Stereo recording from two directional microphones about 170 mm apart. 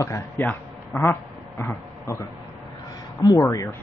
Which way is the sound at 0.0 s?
15° left (ahead or behind).